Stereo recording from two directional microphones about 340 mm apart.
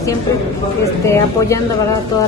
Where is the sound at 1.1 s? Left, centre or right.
Centre.